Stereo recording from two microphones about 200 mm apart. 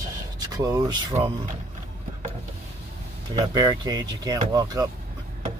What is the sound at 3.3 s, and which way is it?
Speech, 20° right (ahead or behind).